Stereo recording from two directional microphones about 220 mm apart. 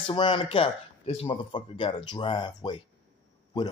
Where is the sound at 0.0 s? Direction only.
20° left (ahead or behind).